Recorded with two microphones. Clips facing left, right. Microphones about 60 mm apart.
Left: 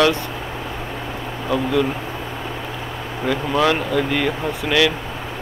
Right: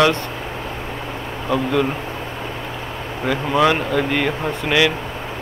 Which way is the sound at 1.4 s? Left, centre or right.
Centre.